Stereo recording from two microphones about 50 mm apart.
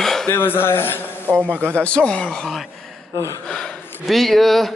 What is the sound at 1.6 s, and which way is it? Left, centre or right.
Speech, left.